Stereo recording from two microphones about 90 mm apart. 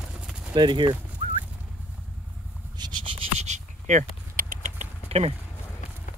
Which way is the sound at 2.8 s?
50° right (ahead or behind).